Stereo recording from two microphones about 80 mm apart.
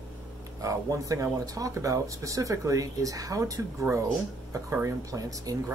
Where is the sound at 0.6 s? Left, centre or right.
Right.